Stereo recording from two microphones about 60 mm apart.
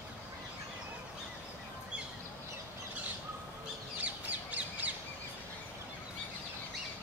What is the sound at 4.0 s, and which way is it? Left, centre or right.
Bird, right.